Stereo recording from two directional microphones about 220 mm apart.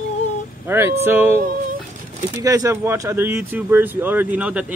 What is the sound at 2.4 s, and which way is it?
Speech, 15° right (ahead or behind).